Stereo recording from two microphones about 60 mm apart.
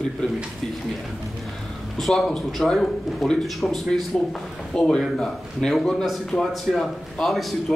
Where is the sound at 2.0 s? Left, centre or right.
Centre.